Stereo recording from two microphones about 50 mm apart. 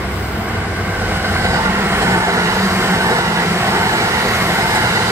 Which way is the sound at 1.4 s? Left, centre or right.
Right.